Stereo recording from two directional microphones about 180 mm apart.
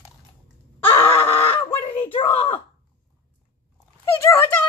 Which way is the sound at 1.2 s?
30° left (ahead or behind).